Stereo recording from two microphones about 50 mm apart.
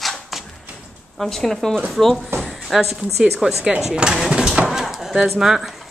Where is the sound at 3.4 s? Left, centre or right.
Centre.